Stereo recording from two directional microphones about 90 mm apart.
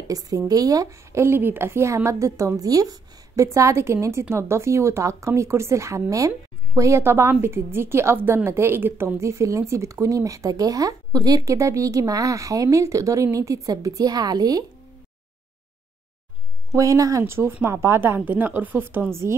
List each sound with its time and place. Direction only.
0.1 s a woman's voice: 45° right (ahead or behind)
16.7 s a woman's voice: 35° right (ahead or behind)
17.3 s speech: 25° right (ahead or behind)